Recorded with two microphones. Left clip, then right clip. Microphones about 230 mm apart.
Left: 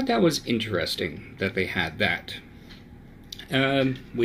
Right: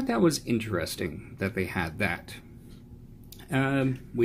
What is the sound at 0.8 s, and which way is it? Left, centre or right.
Speech, right.